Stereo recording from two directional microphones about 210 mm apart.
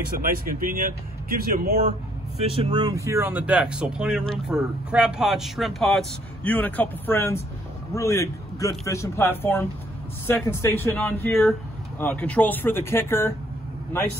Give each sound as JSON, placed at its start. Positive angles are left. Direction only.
{"t": 0.2, "sound": "speech", "side_deg": -40}
{"t": 2.3, "sound": "a man's voice", "side_deg": -25}